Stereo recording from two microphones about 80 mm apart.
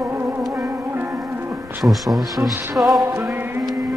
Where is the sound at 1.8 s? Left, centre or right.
Centre.